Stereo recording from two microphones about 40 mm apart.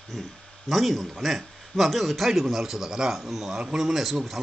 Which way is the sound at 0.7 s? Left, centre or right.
Centre.